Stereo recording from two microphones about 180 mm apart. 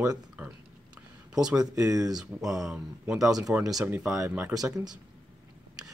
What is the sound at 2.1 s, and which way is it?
Speech, centre (ahead or behind).